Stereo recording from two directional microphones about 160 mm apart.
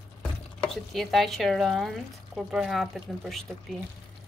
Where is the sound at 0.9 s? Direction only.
Centre (ahead or behind).